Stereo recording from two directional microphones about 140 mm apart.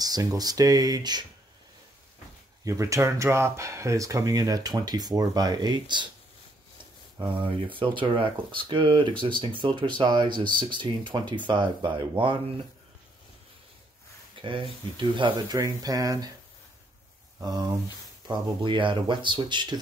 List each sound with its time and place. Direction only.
0.0 s speech: 25° right (ahead or behind)
2.6 s speech: 20° right (ahead or behind)
7.4 s speech: 40° right (ahead or behind)
14.4 s speech: 35° right (ahead or behind)
17.4 s speech: 30° right (ahead or behind)